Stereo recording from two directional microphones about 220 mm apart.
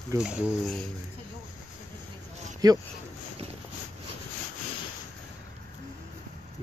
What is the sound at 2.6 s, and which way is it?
Speech, 15° right (ahead or behind).